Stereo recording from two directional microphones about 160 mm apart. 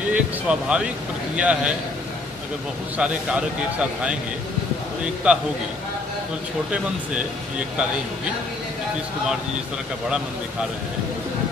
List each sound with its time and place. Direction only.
0.1 s speech: 5° right (ahead or behind)
3.0 s speech: 5° right (ahead or behind)
5.2 s speech: 10° right (ahead or behind)